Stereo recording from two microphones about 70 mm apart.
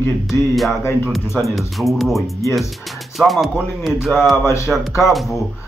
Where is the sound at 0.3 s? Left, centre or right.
Centre.